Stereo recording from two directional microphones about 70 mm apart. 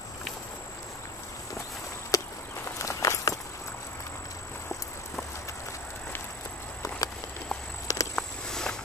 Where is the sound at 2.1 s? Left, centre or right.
Left.